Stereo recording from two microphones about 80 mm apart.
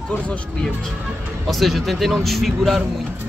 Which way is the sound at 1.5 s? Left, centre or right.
Centre.